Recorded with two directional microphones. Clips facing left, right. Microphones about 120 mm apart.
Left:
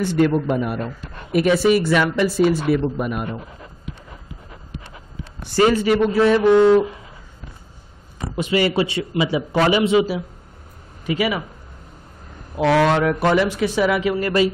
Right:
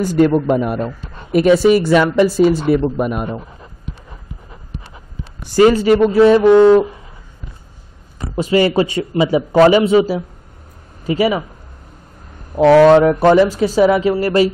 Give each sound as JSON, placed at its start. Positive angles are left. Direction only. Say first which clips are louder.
{"t": 0.0, "sound": "a man's voice", "louder": "right 5 dB", "side_deg": -40}
{"t": 5.7, "sound": "a man's voice", "louder": "right 5 dB", "side_deg": -45}
{"t": 8.4, "sound": "a man's voice", "louder": "right 5 dB", "side_deg": -35}
{"t": 12.5, "sound": "a man's voice", "louder": "right 9 dB", "side_deg": -35}